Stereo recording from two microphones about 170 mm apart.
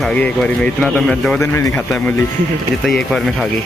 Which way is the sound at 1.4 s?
15° left (ahead or behind).